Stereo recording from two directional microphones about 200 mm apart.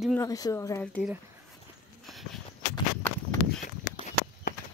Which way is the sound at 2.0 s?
Centre (ahead or behind).